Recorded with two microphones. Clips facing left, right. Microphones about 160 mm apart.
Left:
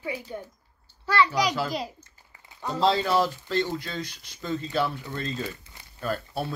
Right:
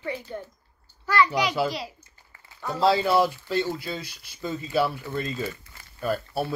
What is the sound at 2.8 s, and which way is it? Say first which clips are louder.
Speech: right 2 dB; 5° right (ahead or behind).